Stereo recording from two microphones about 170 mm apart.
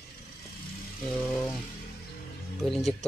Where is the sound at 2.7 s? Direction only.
Centre (ahead or behind).